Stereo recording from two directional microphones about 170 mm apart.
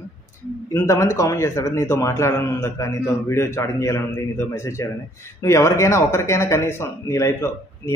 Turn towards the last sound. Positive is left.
turn(degrees=15)  # may be behind; listen again after turning